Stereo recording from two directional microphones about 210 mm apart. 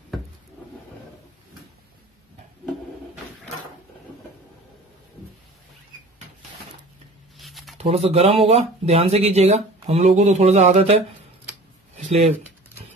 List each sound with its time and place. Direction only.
7.3 s a sound: centre (ahead or behind)
7.7 s speech: 30° right (ahead or behind)
12.0 s speech: 35° right (ahead or behind)